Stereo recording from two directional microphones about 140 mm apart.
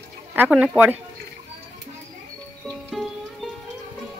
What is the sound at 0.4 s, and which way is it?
Speech, 10° right (ahead or behind).